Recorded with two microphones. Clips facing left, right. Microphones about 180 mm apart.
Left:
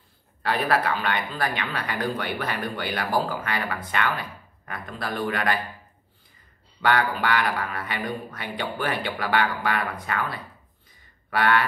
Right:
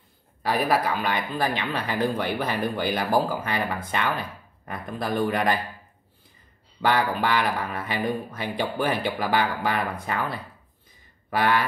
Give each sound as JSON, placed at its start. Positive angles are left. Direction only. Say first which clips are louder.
{"t": 0.5, "sound": "speech", "louder": "right 1 dB", "side_deg": -15}
{"t": 6.8, "sound": "speech", "louder": "even", "side_deg": -20}
{"t": 11.2, "sound": "a sound", "louder": "even", "side_deg": -15}